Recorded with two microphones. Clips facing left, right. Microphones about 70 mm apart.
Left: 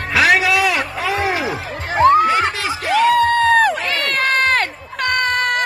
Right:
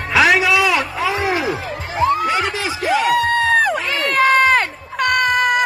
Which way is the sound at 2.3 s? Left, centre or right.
Left.